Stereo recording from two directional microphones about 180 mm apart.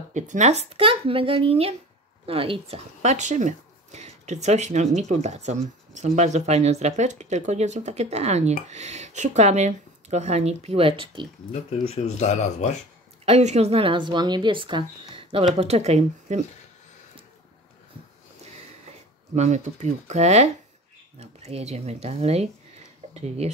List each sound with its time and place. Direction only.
0.1 s speech: 40° right (ahead or behind)
11.5 s speech: 40° left (ahead or behind)
13.2 s a woman's voice: 35° right (ahead or behind)
19.3 s speech: 40° right (ahead or behind)